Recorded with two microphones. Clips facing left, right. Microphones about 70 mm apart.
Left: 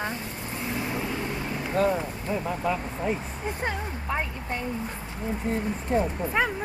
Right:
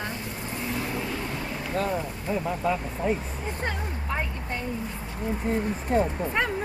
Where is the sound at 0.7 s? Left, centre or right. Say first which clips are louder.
Left 2 dB; centre.